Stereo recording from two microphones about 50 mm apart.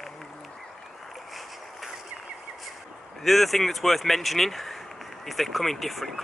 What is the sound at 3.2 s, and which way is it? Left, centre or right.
Speech, centre.